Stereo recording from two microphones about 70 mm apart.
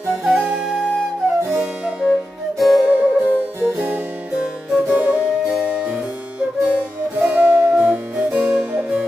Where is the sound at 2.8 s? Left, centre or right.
Right.